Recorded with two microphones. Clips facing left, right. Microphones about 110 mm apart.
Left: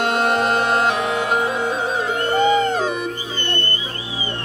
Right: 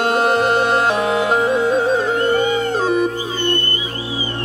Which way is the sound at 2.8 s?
40° right (ahead or behind).